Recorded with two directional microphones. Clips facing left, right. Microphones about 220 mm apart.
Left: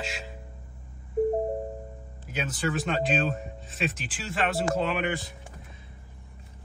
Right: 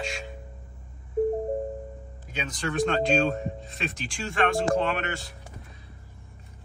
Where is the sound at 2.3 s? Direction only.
5° left (ahead or behind).